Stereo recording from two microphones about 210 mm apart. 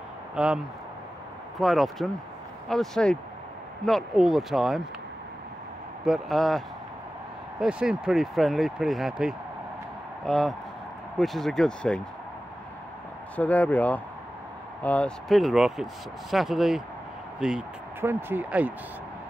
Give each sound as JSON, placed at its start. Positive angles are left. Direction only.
{"t": 0.4, "sound": "speech", "side_deg": -5}
{"t": 1.6, "sound": "speech", "side_deg": 0}
{"t": 6.0, "sound": "speech", "side_deg": 0}
{"t": 7.6, "sound": "speech", "side_deg": -5}
{"t": 13.4, "sound": "speech", "side_deg": 5}